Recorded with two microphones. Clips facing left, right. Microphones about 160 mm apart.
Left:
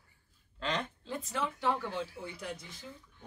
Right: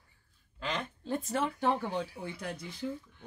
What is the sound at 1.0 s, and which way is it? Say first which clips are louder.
A man's voice: right 4 dB; 50° right (ahead or behind).